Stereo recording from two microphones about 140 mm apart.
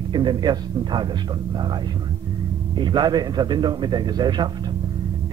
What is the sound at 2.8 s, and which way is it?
Speech, 35° right (ahead or behind).